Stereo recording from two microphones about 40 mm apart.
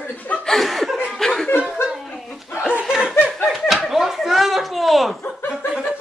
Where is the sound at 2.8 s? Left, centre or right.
Centre.